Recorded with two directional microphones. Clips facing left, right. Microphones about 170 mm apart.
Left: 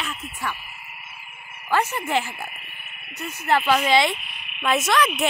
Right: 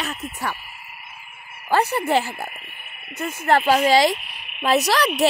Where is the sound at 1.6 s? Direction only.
35° right (ahead or behind).